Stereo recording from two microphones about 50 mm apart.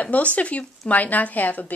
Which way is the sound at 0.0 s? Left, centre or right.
Left.